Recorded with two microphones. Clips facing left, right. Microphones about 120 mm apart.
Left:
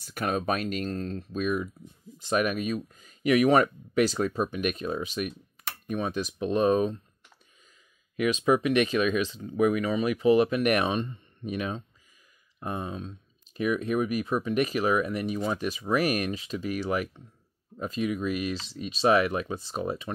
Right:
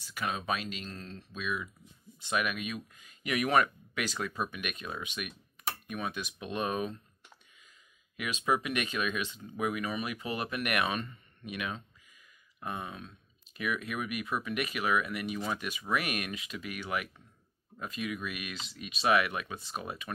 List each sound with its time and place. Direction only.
0.0 s speech: 50° left (ahead or behind)
8.2 s speech: 30° left (ahead or behind)